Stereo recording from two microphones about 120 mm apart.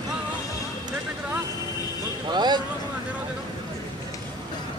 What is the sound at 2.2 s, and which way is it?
Speech, 35° right (ahead or behind).